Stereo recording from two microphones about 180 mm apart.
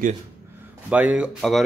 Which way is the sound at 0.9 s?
10° right (ahead or behind).